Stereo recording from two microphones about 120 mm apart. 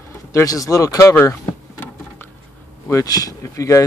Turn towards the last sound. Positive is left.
turn(degrees=25)  # may be behind; listen again after turning